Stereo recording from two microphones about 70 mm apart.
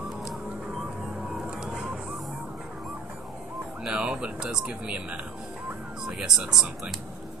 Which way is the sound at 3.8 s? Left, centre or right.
Centre.